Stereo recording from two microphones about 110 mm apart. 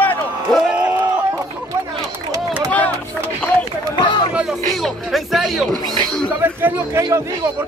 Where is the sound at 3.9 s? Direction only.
45° left (ahead or behind).